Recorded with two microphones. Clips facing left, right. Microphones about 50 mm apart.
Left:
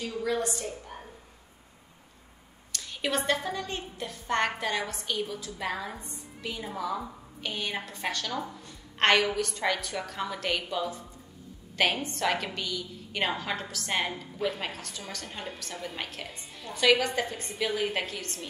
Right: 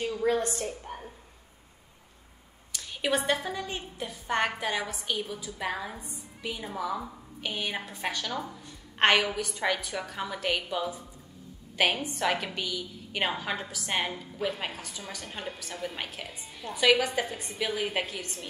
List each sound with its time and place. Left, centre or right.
0.0 s a woman's voice: right
2.7 s a woman's voice: centre